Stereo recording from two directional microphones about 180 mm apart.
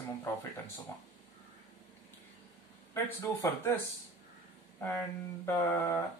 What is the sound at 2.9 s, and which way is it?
Speech, 15° left (ahead or behind).